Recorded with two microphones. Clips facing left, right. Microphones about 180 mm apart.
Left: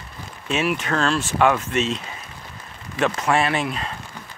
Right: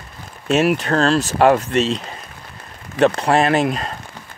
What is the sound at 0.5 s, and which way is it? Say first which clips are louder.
Speech: right 6 dB; 40° right (ahead or behind).